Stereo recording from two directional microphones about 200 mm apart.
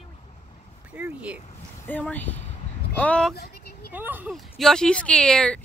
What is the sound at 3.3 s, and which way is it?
Vehicle, 50° left (ahead or behind).